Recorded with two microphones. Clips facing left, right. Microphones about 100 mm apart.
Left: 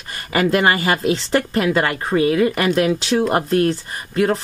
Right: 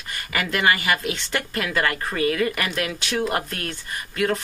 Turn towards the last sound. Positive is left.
turn(degrees=30)  # may be behind; listen again after turning